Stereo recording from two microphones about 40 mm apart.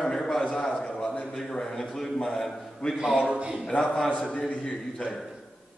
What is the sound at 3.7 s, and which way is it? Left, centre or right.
A man's voice, left.